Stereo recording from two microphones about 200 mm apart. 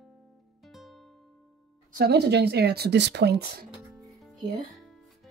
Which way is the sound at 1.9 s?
55° right (ahead or behind).